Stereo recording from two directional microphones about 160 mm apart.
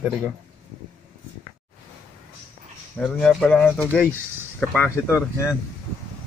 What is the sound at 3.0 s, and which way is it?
Speech, 5° left (ahead or behind).